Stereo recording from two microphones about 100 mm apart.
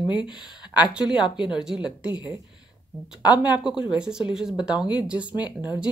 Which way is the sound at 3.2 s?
45° left (ahead or behind).